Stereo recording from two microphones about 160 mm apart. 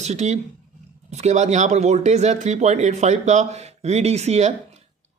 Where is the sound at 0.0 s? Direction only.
45° right (ahead or behind).